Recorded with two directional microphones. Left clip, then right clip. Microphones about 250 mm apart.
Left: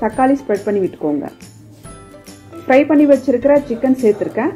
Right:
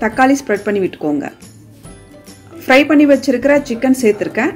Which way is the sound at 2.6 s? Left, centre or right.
Right.